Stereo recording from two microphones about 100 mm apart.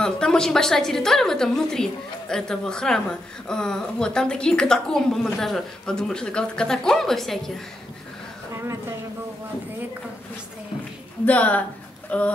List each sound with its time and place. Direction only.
0.0 s a woman's voice: 5° left (ahead or behind)
11.2 s a woman's voice: 15° left (ahead or behind)